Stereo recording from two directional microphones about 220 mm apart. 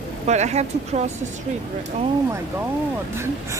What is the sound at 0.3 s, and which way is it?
Speech, 30° right (ahead or behind).